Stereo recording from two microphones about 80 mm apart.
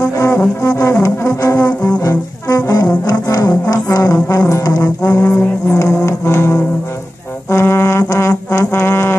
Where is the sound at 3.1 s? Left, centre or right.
Left.